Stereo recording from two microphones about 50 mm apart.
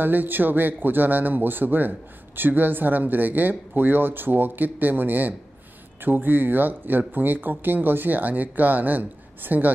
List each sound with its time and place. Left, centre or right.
0.0 s a man's voice: right